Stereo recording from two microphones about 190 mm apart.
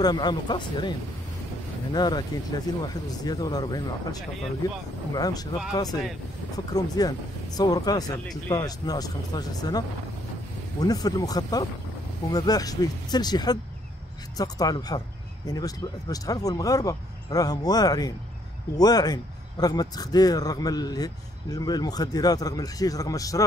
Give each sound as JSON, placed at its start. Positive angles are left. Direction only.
{"t": 0.0, "sound": "speech", "side_deg": 20}
{"t": 2.0, "sound": "speech", "side_deg": 20}
{"t": 6.5, "sound": "speech", "side_deg": 20}